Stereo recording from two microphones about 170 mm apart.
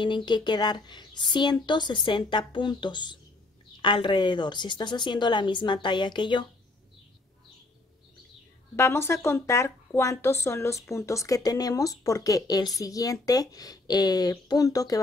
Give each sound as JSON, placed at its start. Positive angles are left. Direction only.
{"t": 0.0, "sound": "a woman's voice", "side_deg": 25}
{"t": 8.7, "sound": "a woman's voice", "side_deg": 15}